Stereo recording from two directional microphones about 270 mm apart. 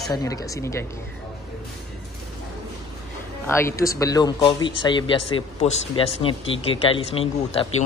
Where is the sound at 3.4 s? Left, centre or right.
Centre.